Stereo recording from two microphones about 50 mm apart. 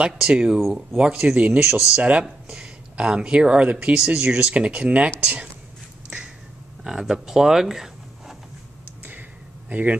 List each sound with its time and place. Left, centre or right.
0.0 s speech: centre
1.6 s speech: centre
2.0 s speech: right
6.0 s finger snapping: centre
6.8 s speech: centre
9.7 s speech: right